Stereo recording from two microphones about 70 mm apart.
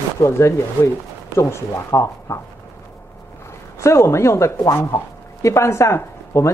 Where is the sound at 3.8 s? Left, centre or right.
Left.